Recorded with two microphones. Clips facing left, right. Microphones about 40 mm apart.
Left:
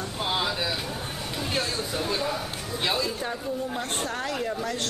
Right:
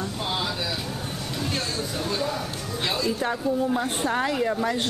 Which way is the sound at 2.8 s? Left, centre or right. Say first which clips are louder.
Even; centre.